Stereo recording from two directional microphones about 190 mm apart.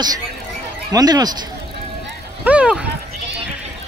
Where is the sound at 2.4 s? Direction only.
5° right (ahead or behind).